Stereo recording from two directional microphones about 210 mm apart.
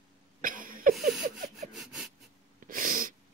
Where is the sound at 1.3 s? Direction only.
Centre (ahead or behind).